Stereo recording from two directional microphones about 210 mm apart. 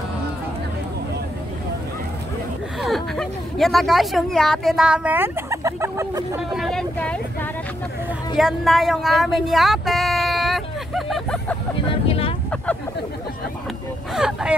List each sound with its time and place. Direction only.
2.8 s speech: centre (ahead or behind)
6.5 s speech: centre (ahead or behind)
8.4 s speech: centre (ahead or behind)
11.9 s speech: 25° left (ahead or behind)
14.1 s speech: 5° right (ahead or behind)